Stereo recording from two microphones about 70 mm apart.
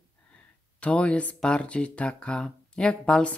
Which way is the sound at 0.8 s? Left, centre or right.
Centre.